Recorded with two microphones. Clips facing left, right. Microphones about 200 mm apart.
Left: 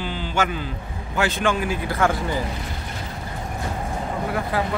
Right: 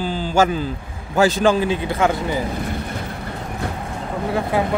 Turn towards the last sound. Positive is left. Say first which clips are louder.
# right 4 dB
turn(degrees=-20)  # may be behind; listen again after turning